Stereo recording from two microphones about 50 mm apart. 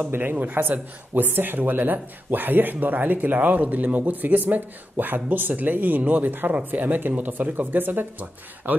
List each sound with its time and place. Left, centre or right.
0.1 s a man's voice: right